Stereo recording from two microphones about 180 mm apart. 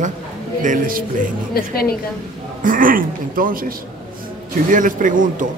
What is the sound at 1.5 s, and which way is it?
Speech, 55° left (ahead or behind).